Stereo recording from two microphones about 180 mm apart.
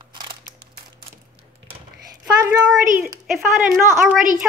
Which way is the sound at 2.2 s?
10° right (ahead or behind).